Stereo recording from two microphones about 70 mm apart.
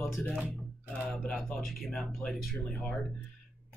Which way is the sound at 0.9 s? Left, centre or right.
Centre.